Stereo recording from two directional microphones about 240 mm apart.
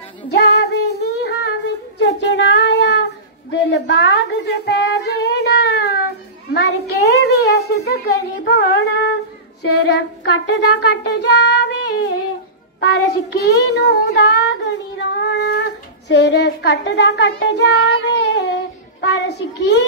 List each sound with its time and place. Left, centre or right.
0.3 s music: left
2.0 s child singing: left
6.5 s a sound: left
9.6 s child singing: left
12.8 s child singing: left